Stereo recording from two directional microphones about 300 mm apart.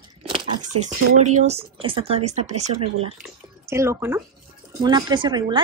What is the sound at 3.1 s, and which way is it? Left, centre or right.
Speech, centre.